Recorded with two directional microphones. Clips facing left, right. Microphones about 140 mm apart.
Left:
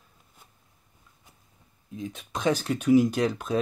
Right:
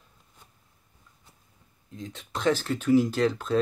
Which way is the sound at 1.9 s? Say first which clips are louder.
Left 2 dB; 10° left (ahead or behind).